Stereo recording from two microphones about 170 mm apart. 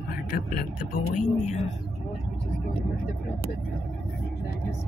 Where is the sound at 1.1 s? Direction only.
50° left (ahead or behind).